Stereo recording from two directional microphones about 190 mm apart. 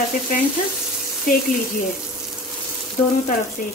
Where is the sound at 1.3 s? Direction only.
45° left (ahead or behind).